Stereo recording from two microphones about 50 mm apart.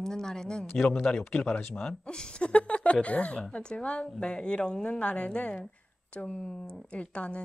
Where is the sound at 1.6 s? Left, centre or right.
Left.